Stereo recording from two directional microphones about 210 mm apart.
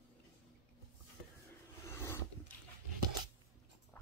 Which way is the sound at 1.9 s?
10° left (ahead or behind).